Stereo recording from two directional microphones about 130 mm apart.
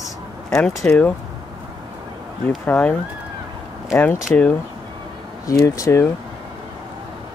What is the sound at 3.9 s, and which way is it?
Speech, 15° left (ahead or behind).